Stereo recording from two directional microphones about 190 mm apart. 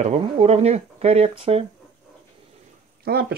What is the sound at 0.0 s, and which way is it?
Speech, 35° right (ahead or behind).